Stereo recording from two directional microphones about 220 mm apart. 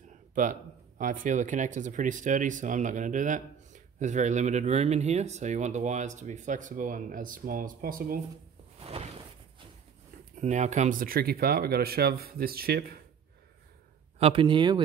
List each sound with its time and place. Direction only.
0.3 s speech: 35° right (ahead or behind)
8.7 s a sound: 25° right (ahead or behind)
10.4 s speech: 35° right (ahead or behind)
14.1 s speech: 25° right (ahead or behind)